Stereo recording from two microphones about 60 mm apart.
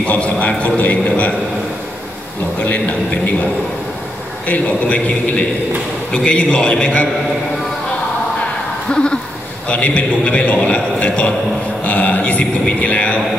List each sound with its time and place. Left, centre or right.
0.0 s a man's voice: left
2.6 s a man's voice: left
4.5 s a man's voice: left
8.9 s a sound: centre
9.7 s a man's voice: left